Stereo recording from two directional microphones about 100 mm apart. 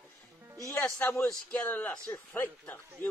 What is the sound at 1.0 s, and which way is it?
A man's voice, 25° left (ahead or behind).